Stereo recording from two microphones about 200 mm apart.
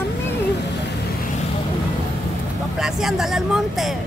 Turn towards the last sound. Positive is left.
turn(degrees=0)  # may be behind; listen again after turning